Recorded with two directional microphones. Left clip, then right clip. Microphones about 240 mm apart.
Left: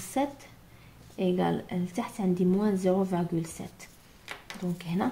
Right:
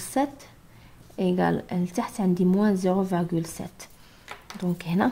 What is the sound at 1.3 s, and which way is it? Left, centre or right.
A woman's voice, right.